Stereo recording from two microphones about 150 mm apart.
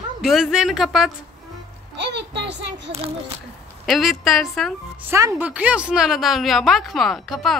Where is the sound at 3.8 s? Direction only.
Centre (ahead or behind).